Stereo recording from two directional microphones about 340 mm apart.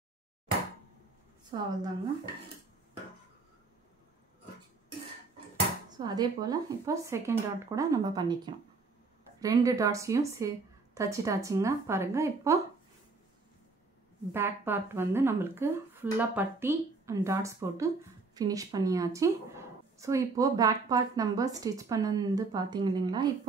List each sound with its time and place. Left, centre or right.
1.5 s speech: centre
5.9 s speech: centre
14.3 s speech: centre